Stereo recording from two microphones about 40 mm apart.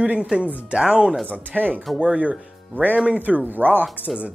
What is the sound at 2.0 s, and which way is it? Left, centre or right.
Speech, right.